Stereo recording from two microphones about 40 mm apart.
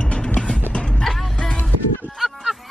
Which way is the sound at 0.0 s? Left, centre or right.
Left.